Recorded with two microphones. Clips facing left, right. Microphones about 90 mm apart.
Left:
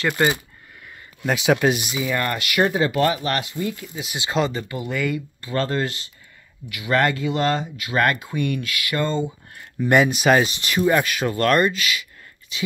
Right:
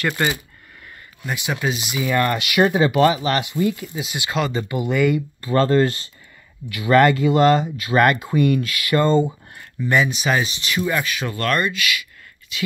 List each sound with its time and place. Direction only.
1.2 s speech: 90° left
1.6 s speech: 55° left (ahead or behind)
2.0 s speech: 5° right (ahead or behind)
4.2 s speech: 30° left (ahead or behind)
4.6 s speech: 20° right (ahead or behind)
5.4 s speech: 40° right (ahead or behind)
9.8 s speech: 50° left (ahead or behind); by 12.6 s 30° left (ahead or behind)